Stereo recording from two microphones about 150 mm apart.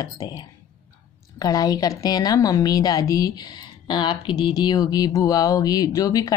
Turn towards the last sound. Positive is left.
turn(degrees=25)  # may be behind; listen again after turning